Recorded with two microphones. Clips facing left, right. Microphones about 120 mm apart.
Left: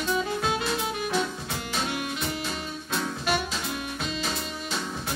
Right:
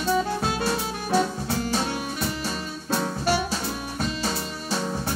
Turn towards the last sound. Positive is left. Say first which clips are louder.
# right 4 dB
turn(degrees=-35)  # may be behind; listen again after turning